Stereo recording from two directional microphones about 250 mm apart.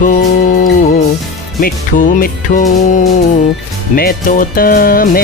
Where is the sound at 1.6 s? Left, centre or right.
Left.